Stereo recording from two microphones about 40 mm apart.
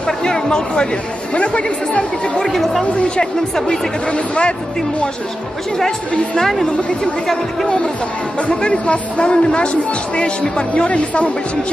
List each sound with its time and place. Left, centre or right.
0.0 s speech: left
2.4 s a woman's voice: centre
2.8 s speech: left
3.5 s a woman's voice: centre
4.1 s speech: left
6.3 s a woman's voice: centre; by 11.2 s left